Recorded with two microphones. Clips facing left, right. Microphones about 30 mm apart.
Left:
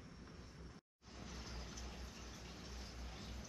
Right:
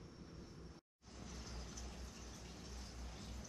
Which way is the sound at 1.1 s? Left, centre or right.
Centre.